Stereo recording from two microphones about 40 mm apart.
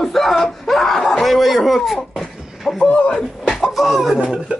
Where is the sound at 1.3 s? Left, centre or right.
Centre.